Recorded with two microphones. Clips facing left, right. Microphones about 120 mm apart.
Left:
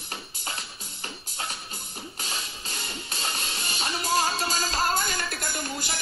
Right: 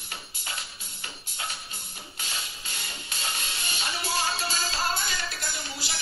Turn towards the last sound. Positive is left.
turn(degrees=50)  # may be behind; listen again after turning